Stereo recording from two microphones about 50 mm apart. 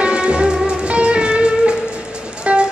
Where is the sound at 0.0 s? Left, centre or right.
Centre.